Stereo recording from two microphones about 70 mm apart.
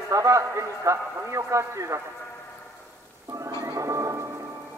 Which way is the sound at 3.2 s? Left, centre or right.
Right.